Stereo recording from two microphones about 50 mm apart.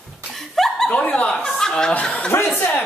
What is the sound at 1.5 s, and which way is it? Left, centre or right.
Chuckle, centre.